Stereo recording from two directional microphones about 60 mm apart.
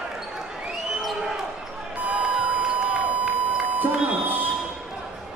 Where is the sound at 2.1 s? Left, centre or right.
Centre.